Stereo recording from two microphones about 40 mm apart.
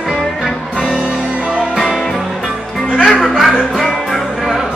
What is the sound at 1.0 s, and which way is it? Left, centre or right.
Music, right.